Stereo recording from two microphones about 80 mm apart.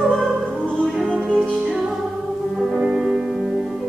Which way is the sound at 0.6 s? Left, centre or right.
Centre.